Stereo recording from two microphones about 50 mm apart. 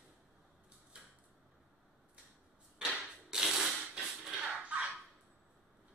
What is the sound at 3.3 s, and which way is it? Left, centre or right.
Mechanisms, centre.